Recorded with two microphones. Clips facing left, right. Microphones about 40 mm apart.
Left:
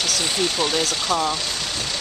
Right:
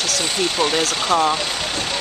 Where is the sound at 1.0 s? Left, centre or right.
Right.